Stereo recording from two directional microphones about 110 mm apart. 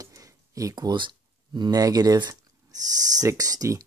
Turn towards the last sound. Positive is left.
turn(degrees=-30)  # may be behind; listen again after turning